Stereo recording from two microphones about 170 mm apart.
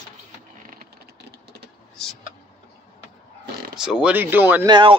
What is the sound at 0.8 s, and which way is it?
Typing, 75° right (ahead or behind).